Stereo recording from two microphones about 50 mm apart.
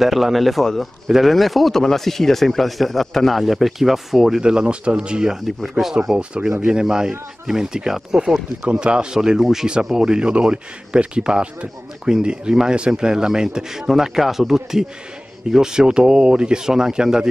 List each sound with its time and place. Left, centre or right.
0.0 s speech: centre
4.4 s speech: centre
5.6 s speech: centre
6.1 s a man's voice: centre
8.6 s a man's voice: centre